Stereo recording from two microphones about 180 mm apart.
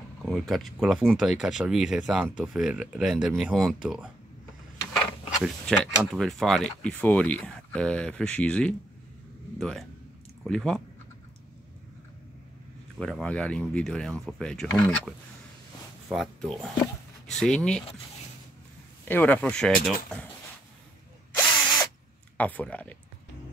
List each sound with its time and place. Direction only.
0.2 s speech: centre (ahead or behind)
5.4 s speech: centre (ahead or behind)
13.0 s speech: 5° left (ahead or behind)
19.0 s speech: 10° left (ahead or behind)
21.5 s drill: 25° left (ahead or behind)
22.4 s speech: 10° left (ahead or behind)